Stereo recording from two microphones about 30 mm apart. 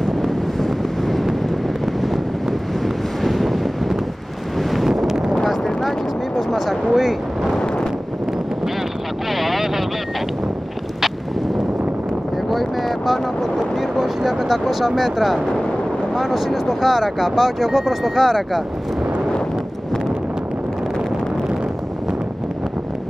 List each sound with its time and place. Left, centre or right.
0.6 s wind noise: centre
3.3 s vehicle: centre
4.6 s wind noise: centre
5.3 s a sound: centre
6.5 s a sound: centre
7.5 s wind noise: left
9.3 s vehicle: centre
12.4 s a sound: centre
16.2 s speech: centre